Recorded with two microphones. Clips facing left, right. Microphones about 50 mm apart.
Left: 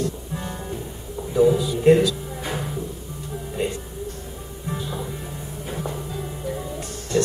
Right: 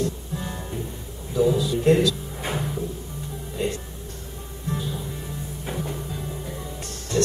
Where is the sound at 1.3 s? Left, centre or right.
Left.